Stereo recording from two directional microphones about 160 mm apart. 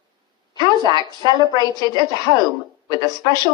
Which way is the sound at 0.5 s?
25° right (ahead or behind).